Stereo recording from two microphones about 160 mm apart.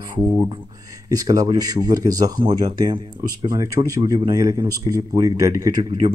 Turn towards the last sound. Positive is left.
turn(degrees=-30)  # may be behind; listen again after turning